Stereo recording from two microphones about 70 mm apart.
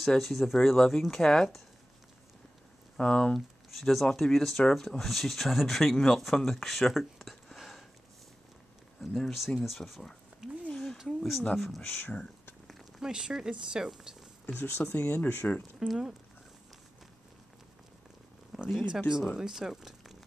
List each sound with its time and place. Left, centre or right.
0.0 s speech: centre
3.0 s speech: centre
3.3 s speech: centre
9.0 s speech: centre
10.7 s a sound: centre
11.0 s a sound: centre
11.5 s speech: centre
11.8 s speech: left
12.6 s a sound: centre
13.1 s speech: centre
14.9 s speech: left
15.9 s speech: centre
18.7 s speech: centre